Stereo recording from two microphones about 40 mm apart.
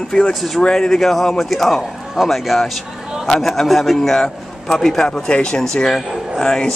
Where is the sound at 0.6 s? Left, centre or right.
Centre.